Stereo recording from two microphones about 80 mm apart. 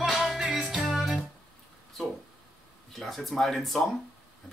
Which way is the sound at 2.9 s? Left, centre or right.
Centre.